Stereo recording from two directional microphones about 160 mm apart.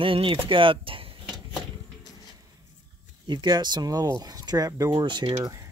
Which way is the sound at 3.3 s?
30° right (ahead or behind).